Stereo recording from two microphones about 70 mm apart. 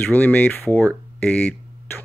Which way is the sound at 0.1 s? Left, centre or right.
Left.